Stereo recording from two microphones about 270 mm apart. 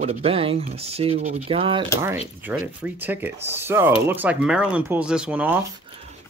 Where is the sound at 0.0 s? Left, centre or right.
Right.